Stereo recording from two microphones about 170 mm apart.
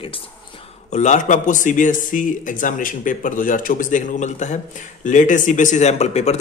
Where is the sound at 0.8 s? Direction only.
45° left (ahead or behind).